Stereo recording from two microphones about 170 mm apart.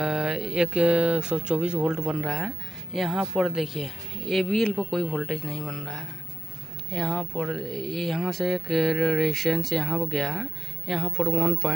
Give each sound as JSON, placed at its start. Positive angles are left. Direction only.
{"t": 0.0, "sound": "speech", "side_deg": 0}